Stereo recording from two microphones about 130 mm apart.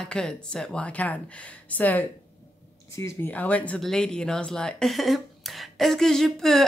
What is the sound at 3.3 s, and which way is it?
Speech, 10° left (ahead or behind).